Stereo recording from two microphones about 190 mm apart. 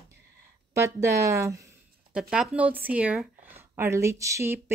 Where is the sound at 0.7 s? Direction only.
15° right (ahead or behind).